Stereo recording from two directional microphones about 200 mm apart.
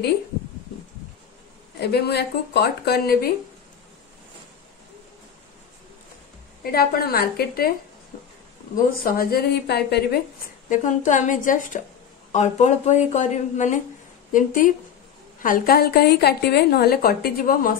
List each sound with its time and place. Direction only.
1.8 s a woman's voice: 55° left (ahead or behind)
6.6 s a woman's voice: 50° left (ahead or behind)
9.0 s a woman's voice: 45° left (ahead or behind)
10.7 s a woman's voice: 40° left (ahead or behind)